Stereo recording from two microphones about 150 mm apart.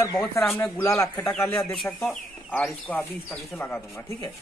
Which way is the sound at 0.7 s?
20° left (ahead or behind).